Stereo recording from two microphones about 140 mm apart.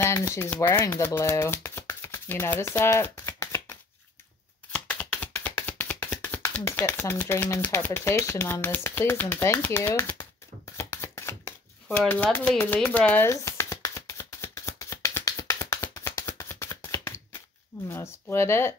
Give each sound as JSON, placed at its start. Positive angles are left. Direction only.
{"t": 0.0, "sound": "speech", "side_deg": 20}
{"t": 4.7, "sound": "a sound", "side_deg": 10}
{"t": 7.6, "sound": "speech", "side_deg": 15}
{"t": 10.8, "sound": "shuffling cards", "side_deg": 20}
{"t": 12.1, "sound": "speech", "side_deg": 10}
{"t": 13.3, "sound": "shuffling cards", "side_deg": 20}
{"t": 17.8, "sound": "speech", "side_deg": 20}